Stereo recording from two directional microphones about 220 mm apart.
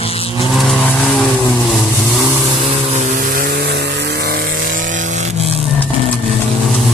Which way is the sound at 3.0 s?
35° right (ahead or behind).